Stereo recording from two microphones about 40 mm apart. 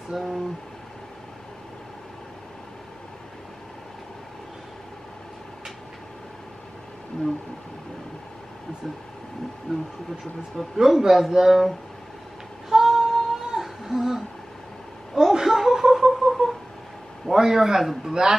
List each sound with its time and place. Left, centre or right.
0.1 s speech: centre
9.7 s speech: centre
10.8 s speech: centre
12.6 s a sound: centre
17.3 s a man's voice: centre